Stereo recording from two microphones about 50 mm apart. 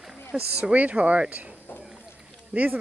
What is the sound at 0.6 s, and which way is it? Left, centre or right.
Speech, right.